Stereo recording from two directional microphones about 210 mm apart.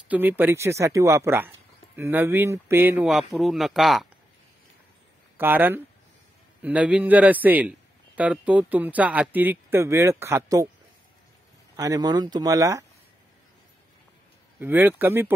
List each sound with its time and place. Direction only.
0.1 s speech: 10° right (ahead or behind)
5.4 s speech: 10° right (ahead or behind)
11.7 s speech: 15° right (ahead or behind)
14.6 s speech: 10° right (ahead or behind)